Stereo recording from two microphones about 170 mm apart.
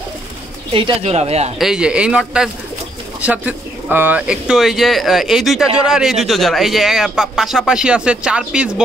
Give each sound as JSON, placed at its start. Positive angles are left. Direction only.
{"t": 0.7, "sound": "speech", "side_deg": -35}
{"t": 1.6, "sound": "speech", "side_deg": -5}